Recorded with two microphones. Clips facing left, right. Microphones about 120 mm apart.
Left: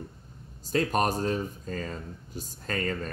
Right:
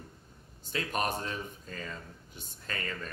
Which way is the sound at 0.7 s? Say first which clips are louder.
Left 7 dB; 40° left (ahead or behind).